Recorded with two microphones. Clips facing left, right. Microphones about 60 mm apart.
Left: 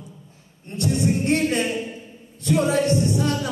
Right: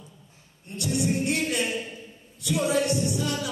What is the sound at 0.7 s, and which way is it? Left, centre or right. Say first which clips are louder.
Music: left 4 dB; left.